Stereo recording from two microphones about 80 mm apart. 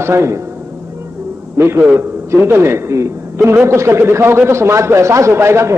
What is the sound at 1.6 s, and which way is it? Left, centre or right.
Speech, right.